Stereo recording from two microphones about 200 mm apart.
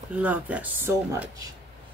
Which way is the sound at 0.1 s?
5° right (ahead or behind).